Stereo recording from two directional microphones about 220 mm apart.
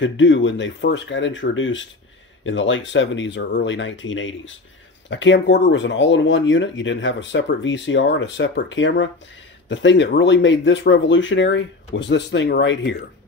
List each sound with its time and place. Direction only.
0.0 s speech: 55° left (ahead or behind)